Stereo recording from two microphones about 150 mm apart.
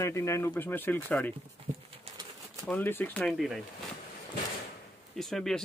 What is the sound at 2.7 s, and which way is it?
Speech, 10° left (ahead or behind).